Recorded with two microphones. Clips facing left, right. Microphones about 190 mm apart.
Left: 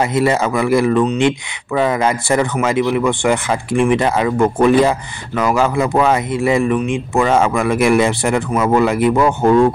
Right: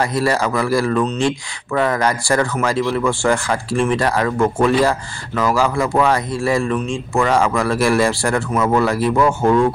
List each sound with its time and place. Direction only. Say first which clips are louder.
0.0 s speech: left 3 dB; 20° left (ahead or behind)